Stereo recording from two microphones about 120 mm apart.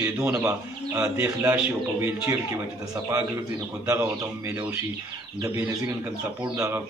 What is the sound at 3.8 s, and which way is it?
Speech, 20° right (ahead or behind).